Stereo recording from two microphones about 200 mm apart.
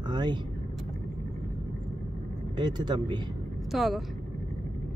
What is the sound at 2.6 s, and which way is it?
Speech, 20° right (ahead or behind).